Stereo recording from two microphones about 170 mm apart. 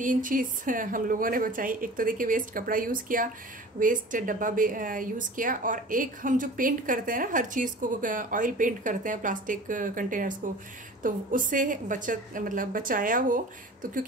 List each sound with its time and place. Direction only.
0.0 s speech: 50° right (ahead or behind)